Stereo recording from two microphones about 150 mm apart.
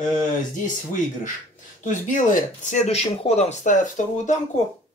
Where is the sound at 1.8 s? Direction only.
60° left (ahead or behind).